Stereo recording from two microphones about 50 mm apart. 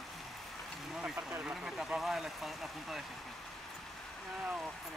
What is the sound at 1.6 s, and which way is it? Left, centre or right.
Vehicle, centre.